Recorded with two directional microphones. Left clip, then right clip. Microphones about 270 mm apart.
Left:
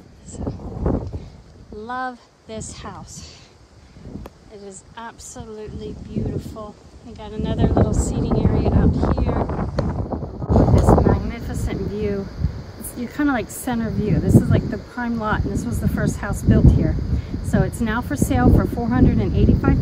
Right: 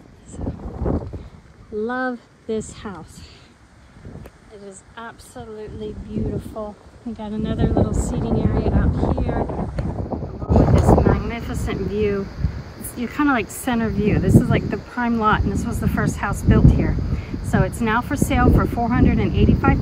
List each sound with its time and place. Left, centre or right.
1.9 s speech: centre
4.9 s speech: centre
9.3 s a sound: right
9.9 s vehicle: centre
10.5 s speech: centre